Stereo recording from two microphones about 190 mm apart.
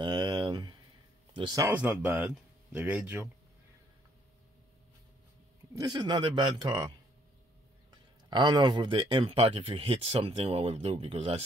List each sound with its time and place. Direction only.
0.0 s a sound: 25° right (ahead or behind)
1.3 s speech: 20° right (ahead or behind)
1.7 s speech: 5° right (ahead or behind)
5.8 s speech: 20° right (ahead or behind)